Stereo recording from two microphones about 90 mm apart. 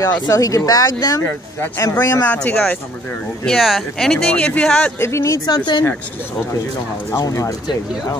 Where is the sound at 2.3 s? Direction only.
5° left (ahead or behind).